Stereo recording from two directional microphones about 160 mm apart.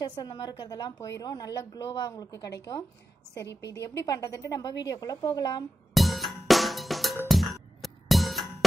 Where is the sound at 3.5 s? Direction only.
90° left.